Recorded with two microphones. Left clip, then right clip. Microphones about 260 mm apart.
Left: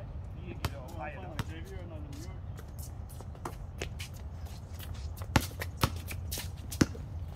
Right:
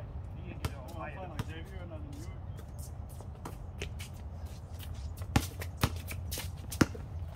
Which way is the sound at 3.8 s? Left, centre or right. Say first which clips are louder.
Left 3 dB; centre.